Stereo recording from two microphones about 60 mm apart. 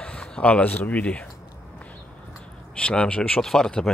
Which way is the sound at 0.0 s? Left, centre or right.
Centre.